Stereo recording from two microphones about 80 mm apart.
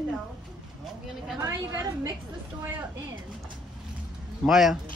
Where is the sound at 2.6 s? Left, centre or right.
Right.